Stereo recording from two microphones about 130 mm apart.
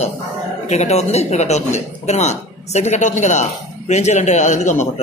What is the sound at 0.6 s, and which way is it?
Speech, 60° left (ahead or behind).